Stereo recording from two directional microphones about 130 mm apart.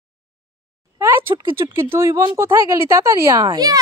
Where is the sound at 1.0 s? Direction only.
20° right (ahead or behind).